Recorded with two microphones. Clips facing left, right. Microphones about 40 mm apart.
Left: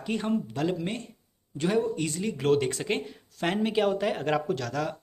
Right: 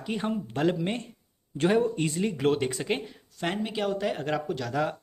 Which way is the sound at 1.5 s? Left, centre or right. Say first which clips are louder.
Right 2 dB; right.